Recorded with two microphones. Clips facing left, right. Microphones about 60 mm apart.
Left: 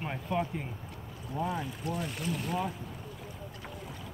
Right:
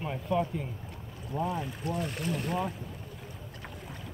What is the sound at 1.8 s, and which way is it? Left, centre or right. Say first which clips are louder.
Speech: right 2 dB; right.